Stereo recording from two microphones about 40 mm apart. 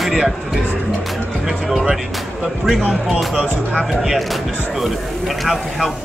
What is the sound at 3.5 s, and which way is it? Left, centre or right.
Speech, left.